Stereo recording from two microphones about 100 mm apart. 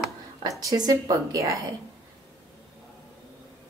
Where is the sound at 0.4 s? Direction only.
35° right (ahead or behind).